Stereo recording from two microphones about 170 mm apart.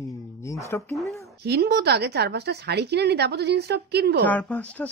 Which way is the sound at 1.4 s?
70° right (ahead or behind).